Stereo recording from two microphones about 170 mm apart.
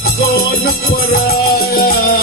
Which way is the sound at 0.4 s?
65° left (ahead or behind).